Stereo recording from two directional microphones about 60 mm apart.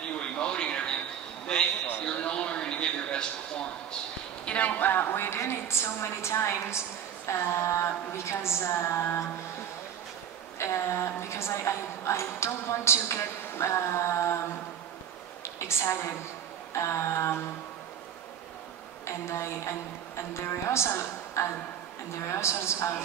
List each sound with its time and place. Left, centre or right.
0.2 s a sound: centre
4.5 s a woman's voice: left
10.6 s a woman's voice: left
15.4 s a woman's voice: left
19.0 s a woman's voice: left